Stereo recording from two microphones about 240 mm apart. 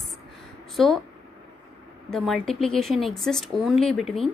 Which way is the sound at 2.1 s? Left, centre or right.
Centre.